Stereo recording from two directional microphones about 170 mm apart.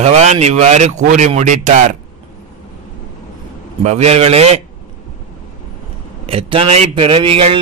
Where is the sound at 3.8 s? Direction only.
40° right (ahead or behind).